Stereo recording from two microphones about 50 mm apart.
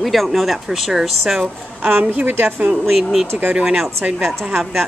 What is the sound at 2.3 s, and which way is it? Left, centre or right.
Speech, right.